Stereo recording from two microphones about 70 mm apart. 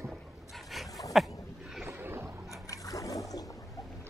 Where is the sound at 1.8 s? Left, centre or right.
Right.